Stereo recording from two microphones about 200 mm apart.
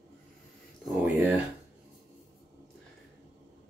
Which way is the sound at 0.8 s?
5° right (ahead or behind).